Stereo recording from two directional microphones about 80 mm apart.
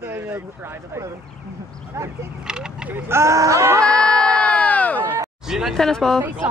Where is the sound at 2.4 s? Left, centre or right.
Centre.